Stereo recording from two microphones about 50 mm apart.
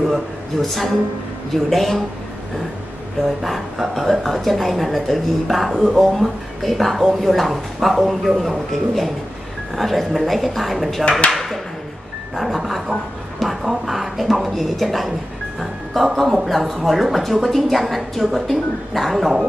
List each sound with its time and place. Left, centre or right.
0.1 s speech: centre
3.4 s speech: centre
11.1 s speech: centre
11.3 s a sound: centre
12.4 s speech: centre